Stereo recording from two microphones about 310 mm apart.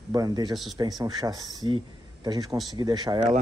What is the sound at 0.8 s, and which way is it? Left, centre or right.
Speech, centre.